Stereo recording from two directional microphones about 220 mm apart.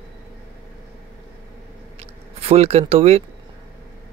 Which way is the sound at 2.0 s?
30° right (ahead or behind).